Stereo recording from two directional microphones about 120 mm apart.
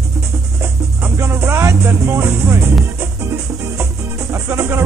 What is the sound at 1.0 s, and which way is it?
Music, 20° right (ahead or behind).